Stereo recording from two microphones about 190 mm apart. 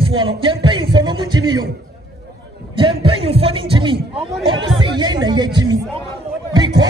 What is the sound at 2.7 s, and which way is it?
Speech, 25° right (ahead or behind).